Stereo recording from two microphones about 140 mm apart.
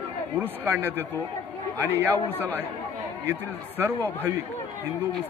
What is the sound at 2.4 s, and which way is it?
Speech, 15° right (ahead or behind).